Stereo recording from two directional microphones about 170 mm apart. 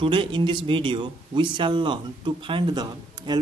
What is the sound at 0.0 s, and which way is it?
Speech, 30° right (ahead or behind).